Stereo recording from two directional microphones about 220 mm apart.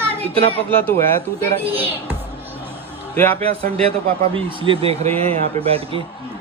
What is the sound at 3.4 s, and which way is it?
A man's voice, 25° right (ahead or behind).